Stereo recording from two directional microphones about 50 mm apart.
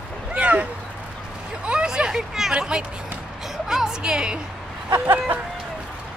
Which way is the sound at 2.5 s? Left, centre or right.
Centre.